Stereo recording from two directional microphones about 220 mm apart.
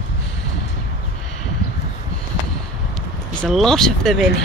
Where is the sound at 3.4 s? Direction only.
Centre (ahead or behind).